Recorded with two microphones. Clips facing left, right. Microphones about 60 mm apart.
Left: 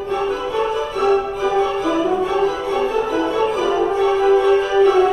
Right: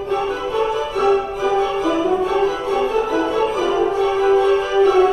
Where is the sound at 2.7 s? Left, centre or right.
Centre.